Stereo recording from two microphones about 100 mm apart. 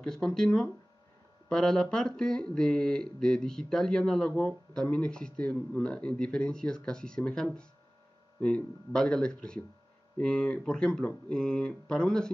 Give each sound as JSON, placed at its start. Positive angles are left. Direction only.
{"t": 0.0, "sound": "speech", "side_deg": 5}